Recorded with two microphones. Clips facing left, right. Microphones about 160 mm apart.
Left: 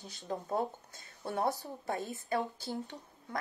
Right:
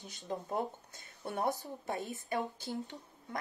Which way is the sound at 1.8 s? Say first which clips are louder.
Left 2 dB; 20° right (ahead or behind).